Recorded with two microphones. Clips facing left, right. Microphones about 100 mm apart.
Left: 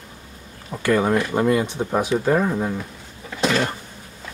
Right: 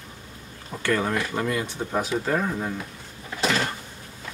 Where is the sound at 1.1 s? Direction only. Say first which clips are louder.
Left 7 dB; 25° left (ahead or behind).